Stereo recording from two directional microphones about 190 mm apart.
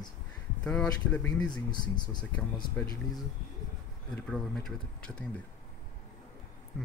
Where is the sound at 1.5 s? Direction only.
20° left (ahead or behind).